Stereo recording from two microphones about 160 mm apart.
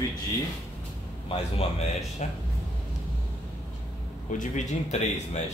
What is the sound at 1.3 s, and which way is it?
Speech, 40° left (ahead or behind).